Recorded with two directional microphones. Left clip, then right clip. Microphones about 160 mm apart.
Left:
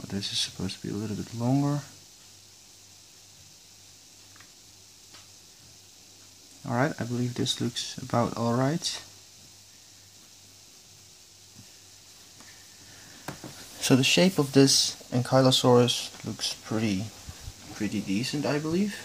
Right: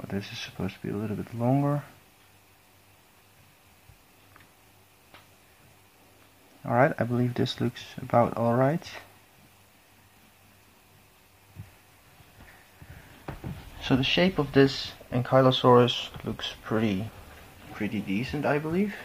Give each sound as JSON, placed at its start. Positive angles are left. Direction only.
{"t": 0.0, "sound": "speech", "side_deg": 0}
{"t": 6.6, "sound": "speech", "side_deg": 0}
{"t": 7.0, "sound": "speech", "side_deg": -10}
{"t": 7.6, "sound": "speech", "side_deg": 5}
{"t": 13.7, "sound": "speech", "side_deg": 65}
{"t": 14.3, "sound": "speech", "side_deg": 40}
{"t": 15.0, "sound": "speech", "side_deg": 30}
{"t": 16.3, "sound": "speech", "side_deg": 5}